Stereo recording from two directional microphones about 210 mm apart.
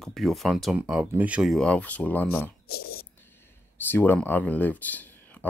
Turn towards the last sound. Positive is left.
turn(degrees=10)  # may be behind; listen again after turning